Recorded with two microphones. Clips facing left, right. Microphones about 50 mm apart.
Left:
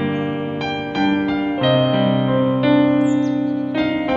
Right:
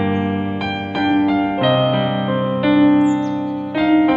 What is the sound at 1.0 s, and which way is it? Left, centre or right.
Music, centre.